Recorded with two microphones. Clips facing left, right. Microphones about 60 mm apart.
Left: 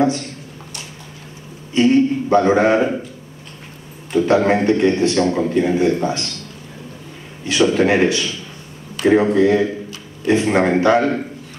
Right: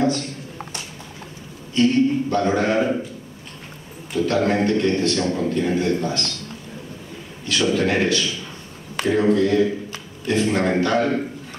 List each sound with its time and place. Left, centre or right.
1.7 s a man's voice: left
4.1 s a man's voice: left
7.4 s a man's voice: left